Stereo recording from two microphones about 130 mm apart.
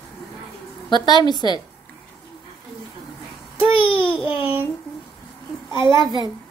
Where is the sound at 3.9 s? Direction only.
10° right (ahead or behind).